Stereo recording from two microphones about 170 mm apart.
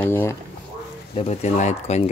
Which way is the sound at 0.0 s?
15° left (ahead or behind).